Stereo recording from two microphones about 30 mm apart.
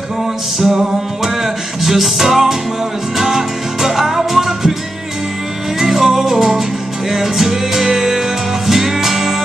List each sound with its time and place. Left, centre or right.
0.7 s music: centre
5.8 s music: centre